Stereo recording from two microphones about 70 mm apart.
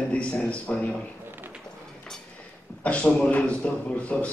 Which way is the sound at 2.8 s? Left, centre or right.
Centre.